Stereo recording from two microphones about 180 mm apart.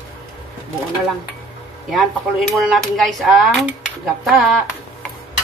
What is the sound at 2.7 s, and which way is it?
Speech, centre (ahead or behind).